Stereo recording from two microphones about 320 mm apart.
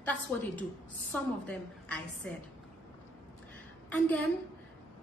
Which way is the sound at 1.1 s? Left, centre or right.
Centre.